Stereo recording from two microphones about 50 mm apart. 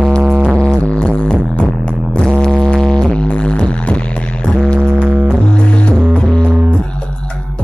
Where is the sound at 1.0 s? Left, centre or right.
Centre.